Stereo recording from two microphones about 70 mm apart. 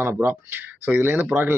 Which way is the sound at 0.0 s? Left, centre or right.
Right.